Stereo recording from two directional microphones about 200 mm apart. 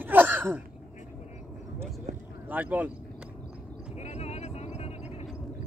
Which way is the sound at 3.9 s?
35° left (ahead or behind).